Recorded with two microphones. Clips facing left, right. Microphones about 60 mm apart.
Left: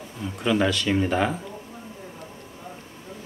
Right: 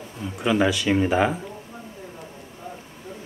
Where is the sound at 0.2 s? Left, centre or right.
Centre.